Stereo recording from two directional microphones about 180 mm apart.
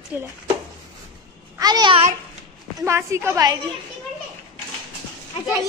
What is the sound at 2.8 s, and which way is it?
Speech, 15° right (ahead or behind).